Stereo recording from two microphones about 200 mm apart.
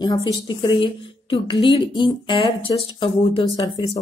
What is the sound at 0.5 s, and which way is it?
Speech, 25° left (ahead or behind).